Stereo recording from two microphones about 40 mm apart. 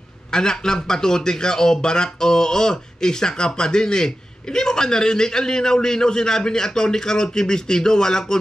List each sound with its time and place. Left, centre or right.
0.3 s a man's voice: centre